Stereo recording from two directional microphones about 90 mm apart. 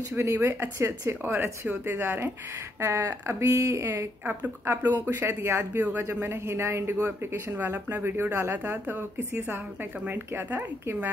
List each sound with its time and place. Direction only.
0.2 s speech: 30° right (ahead or behind)